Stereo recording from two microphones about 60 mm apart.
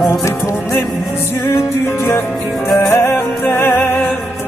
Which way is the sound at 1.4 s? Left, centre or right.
Left.